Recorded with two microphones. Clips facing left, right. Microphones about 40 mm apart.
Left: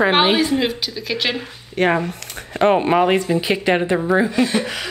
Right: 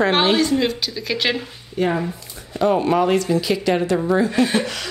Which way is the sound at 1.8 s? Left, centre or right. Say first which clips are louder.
Left 3 dB; left.